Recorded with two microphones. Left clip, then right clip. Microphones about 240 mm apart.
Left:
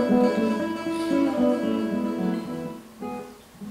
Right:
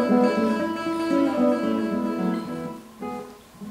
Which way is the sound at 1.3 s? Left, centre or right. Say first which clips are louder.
Right 1 dB; centre.